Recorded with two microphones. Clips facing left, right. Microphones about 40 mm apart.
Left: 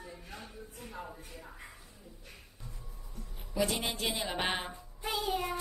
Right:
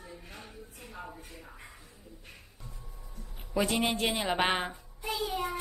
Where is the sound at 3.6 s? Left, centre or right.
Right.